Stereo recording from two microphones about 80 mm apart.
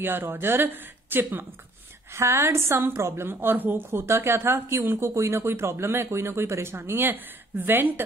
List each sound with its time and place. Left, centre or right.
0.0 s a woman's voice: right